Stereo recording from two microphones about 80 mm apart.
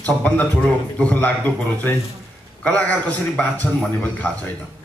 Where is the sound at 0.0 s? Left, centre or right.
Centre.